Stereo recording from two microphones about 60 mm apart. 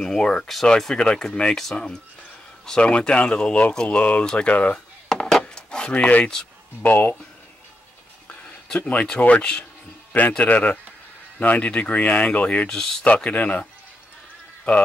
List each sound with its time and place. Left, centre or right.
0.0 s speech: centre
5.1 s a sound: centre; by 6.3 s left
6.8 s speech: left
8.6 s speech: centre